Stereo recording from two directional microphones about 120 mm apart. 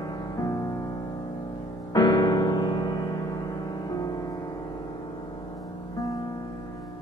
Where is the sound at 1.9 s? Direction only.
35° left (ahead or behind).